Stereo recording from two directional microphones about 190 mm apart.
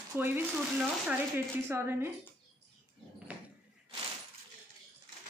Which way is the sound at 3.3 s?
5° right (ahead or behind).